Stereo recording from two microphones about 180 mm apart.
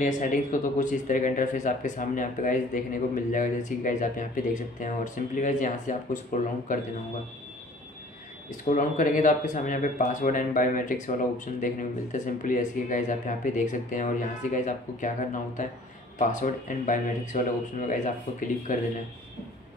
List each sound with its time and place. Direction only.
0.0 s speech: 45° left (ahead or behind)
8.5 s speech: 45° left (ahead or behind)